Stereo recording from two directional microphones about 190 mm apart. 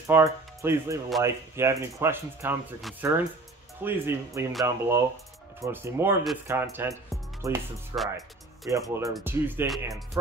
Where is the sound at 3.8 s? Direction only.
10° right (ahead or behind).